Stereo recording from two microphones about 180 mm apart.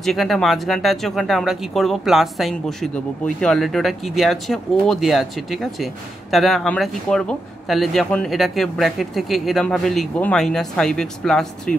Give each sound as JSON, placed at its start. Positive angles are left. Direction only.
{"t": 0.0, "sound": "speech", "side_deg": 0}